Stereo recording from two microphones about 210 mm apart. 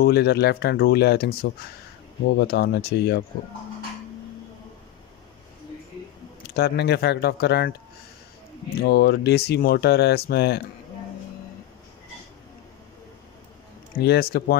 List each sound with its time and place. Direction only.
0.0 s speech: 50° left (ahead or behind)
6.5 s speech: 50° left (ahead or behind)
8.8 s speech: 50° left (ahead or behind)
13.9 s speech: 50° left (ahead or behind)